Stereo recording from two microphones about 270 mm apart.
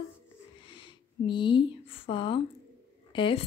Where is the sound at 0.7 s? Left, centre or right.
Centre.